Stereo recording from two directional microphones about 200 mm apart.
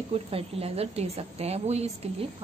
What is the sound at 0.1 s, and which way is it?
A woman's voice, 30° right (ahead or behind).